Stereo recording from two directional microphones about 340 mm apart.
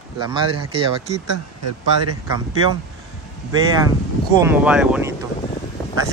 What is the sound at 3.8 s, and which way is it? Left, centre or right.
Speech, centre.